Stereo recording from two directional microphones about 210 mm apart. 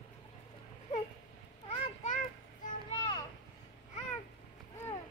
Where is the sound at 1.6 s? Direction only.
30° left (ahead or behind).